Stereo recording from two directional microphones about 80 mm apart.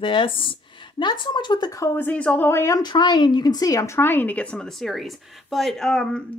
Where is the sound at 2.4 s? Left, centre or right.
Left.